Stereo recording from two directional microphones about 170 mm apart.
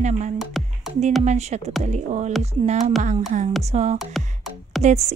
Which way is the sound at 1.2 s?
40° right (ahead or behind).